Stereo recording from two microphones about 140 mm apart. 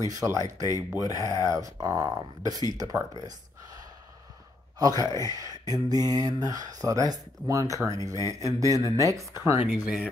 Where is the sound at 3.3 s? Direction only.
25° right (ahead or behind).